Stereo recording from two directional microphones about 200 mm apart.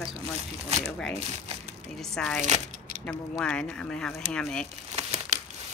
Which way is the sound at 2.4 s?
35° right (ahead or behind).